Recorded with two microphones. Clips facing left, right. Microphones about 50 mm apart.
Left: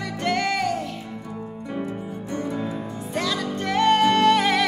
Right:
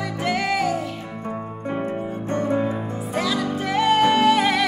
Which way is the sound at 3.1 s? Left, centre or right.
Centre.